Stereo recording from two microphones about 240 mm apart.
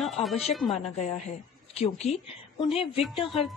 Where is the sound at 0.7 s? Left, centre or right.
Left.